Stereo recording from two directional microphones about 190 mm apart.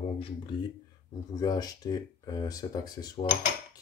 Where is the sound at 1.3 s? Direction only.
20° left (ahead or behind).